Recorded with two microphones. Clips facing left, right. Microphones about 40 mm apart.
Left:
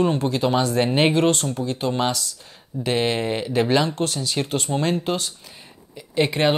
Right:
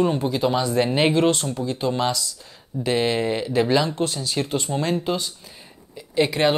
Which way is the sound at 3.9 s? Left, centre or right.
Left.